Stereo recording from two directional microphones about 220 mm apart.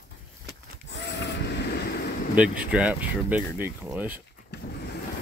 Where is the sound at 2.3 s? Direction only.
5° right (ahead or behind).